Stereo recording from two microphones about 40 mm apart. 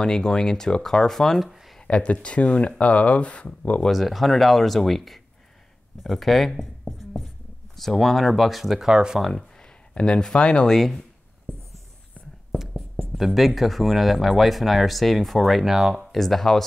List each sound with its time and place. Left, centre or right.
0.0 s speech: centre
1.4 s speech: centre
1.9 s speech: left
3.9 s speech: centre
7.7 s speech: centre
9.9 s speech: left
10.7 s speech: centre
12.5 s a sound: centre
13.1 s speech: centre
16.1 s speech: centre